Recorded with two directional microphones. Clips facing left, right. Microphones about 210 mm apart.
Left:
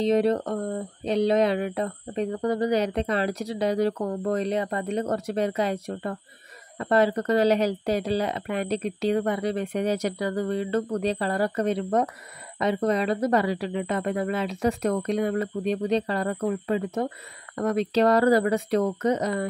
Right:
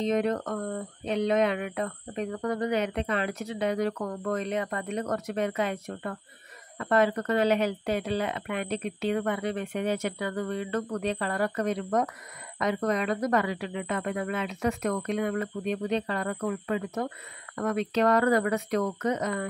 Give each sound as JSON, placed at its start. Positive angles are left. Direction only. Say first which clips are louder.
{"t": 0.0, "sound": "speech", "louder": "left 5 dB", "side_deg": 35}